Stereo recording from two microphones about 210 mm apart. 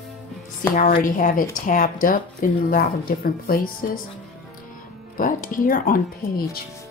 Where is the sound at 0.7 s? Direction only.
40° left (ahead or behind).